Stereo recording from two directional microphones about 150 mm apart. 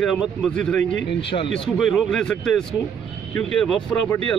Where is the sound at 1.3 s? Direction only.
50° left (ahead or behind).